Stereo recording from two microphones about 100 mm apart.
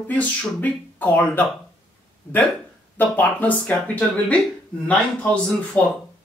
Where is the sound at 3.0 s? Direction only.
15° left (ahead or behind).